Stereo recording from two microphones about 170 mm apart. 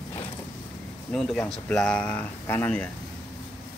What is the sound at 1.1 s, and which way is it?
Speech, 5° left (ahead or behind).